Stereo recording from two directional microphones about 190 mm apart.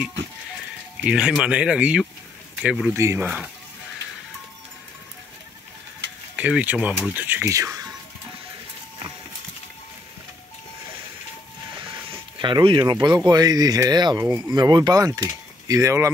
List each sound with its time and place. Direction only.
1.0 s speech: 5° right (ahead or behind)
3.0 s speech: 15° right (ahead or behind)
6.3 s speech: 5° right (ahead or behind)
12.1 s speech: 25° right (ahead or behind)